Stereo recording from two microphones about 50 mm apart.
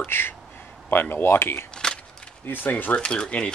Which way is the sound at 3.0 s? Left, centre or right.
Centre.